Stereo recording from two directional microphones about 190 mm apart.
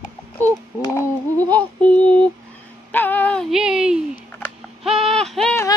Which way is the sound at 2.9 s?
10° left (ahead or behind).